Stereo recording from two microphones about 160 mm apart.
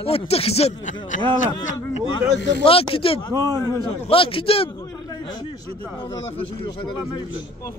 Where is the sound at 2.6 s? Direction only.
35° left (ahead or behind).